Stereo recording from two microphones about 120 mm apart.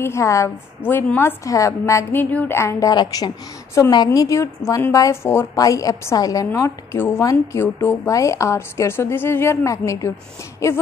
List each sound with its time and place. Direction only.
0.0 s a woman's voice: 25° left (ahead or behind)
2.9 s a woman's voice: 35° left (ahead or behind)